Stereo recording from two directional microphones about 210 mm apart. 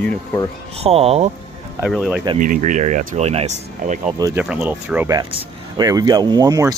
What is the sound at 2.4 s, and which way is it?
Speech, 40° right (ahead or behind).